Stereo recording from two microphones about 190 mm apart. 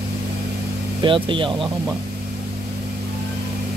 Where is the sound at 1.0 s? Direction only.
25° right (ahead or behind).